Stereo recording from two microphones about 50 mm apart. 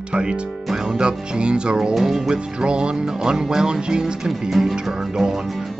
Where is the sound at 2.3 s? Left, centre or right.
Centre.